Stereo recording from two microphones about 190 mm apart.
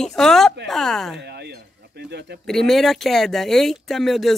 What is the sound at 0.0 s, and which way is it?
Speech, centre (ahead or behind).